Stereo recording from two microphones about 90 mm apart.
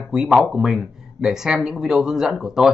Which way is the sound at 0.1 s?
10° right (ahead or behind).